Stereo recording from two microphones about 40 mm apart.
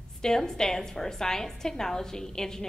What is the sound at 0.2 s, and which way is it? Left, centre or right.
A woman's voice, centre.